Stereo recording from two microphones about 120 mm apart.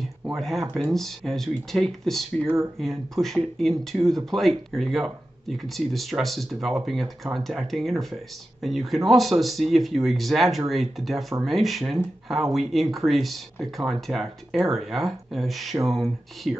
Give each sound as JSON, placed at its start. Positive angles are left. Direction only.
{"t": 0.3, "sound": "speech", "side_deg": 0}
{"t": 2.4, "sound": "speech", "side_deg": -20}
{"t": 2.8, "sound": "speech", "side_deg": 0}